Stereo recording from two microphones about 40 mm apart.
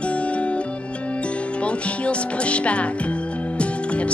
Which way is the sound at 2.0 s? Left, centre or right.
Left.